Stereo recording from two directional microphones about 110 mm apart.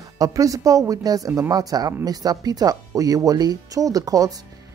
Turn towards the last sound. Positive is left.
turn(degrees=-35)  # may be behind; listen again after turning